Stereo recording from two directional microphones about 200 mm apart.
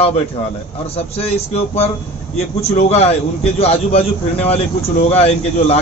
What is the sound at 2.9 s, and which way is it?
A man's voice, 30° left (ahead or behind).